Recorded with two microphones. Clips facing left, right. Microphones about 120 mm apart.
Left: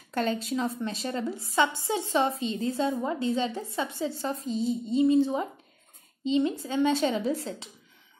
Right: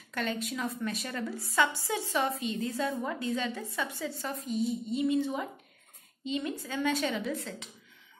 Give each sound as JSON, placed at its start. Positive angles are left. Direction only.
{"t": 0.1, "sound": "a woman's voice", "side_deg": 35}